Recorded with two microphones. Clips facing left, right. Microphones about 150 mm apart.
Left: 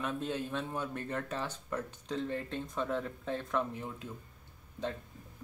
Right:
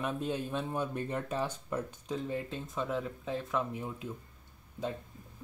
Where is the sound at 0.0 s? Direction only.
15° right (ahead or behind).